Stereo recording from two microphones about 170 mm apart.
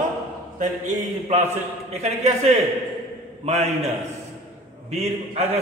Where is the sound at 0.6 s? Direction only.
40° right (ahead or behind).